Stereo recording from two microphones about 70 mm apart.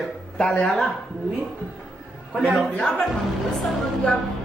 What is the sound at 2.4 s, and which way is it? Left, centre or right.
Speech, centre.